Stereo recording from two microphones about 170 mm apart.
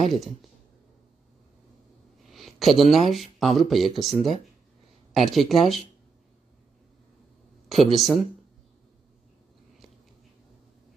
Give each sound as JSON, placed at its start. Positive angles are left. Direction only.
{"t": 2.2, "sound": "a sound", "side_deg": 0}
{"t": 2.8, "sound": "speech", "side_deg": 0}
{"t": 7.6, "sound": "speech", "side_deg": 0}